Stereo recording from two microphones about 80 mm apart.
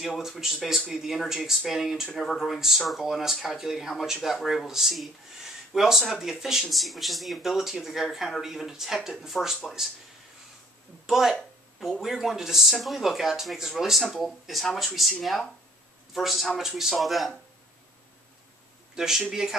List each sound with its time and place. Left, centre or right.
0.0 s speech: centre
11.1 s speech: centre
18.9 s speech: centre